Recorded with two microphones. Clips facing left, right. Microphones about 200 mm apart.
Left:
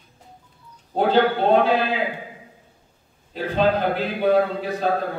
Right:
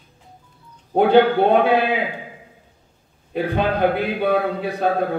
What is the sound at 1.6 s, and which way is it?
Speech, 60° right (ahead or behind).